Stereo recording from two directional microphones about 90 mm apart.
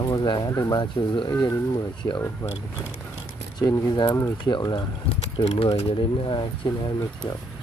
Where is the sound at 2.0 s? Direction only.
40° left (ahead or behind).